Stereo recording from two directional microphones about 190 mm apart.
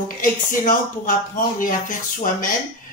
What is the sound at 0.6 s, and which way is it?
Music, 45° left (ahead or behind).